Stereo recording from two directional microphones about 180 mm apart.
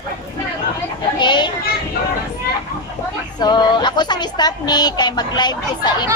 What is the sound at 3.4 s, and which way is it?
A woman's voice, 25° left (ahead or behind).